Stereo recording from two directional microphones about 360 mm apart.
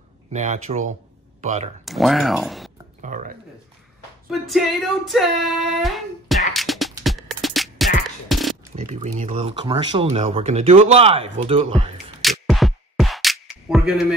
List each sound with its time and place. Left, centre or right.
0.3 s speech: centre
1.9 s female singing: centre
3.0 s speech: right
4.3 s female singing: centre
6.5 s music: centre
8.7 s speech: centre
12.2 s music: centre